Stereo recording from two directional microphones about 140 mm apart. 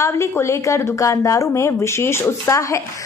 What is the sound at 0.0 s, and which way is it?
A woman's voice, 20° left (ahead or behind).